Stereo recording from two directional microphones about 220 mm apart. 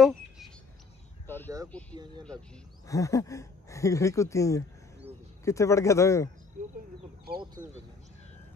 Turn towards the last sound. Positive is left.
turn(degrees=-45)  # may be behind; listen again after turning